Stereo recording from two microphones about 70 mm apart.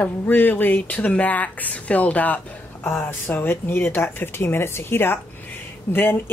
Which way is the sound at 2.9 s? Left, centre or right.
Left.